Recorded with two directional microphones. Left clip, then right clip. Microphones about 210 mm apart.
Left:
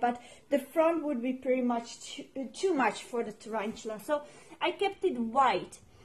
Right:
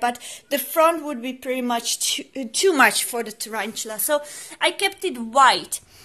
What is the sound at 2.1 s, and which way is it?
Speech, 45° right (ahead or behind).